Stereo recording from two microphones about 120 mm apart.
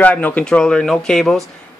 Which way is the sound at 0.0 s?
10° left (ahead or behind).